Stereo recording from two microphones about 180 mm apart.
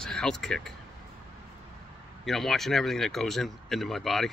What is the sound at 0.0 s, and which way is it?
Speech, 5° left (ahead or behind).